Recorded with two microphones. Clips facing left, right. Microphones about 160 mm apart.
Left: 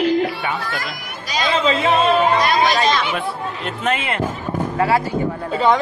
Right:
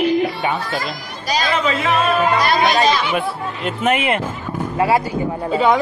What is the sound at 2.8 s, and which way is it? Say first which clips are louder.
Speech: right 2 dB; 10° right (ahead or behind).